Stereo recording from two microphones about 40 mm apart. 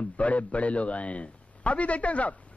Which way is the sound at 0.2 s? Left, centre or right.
Left.